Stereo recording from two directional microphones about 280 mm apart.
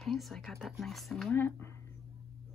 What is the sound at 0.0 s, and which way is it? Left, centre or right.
Speech, centre.